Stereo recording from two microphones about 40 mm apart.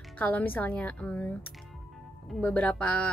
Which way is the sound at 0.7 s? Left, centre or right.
Left.